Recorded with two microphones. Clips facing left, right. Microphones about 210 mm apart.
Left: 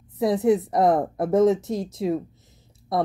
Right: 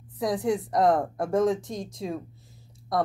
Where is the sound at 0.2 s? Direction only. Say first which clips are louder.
Left 6 dB; 25° left (ahead or behind).